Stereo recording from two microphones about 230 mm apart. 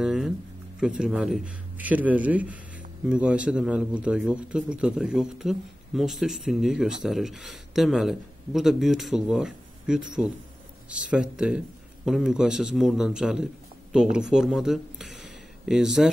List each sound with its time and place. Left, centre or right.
0.0 s a sound: centre
0.7 s speech: centre
11.1 s speech: centre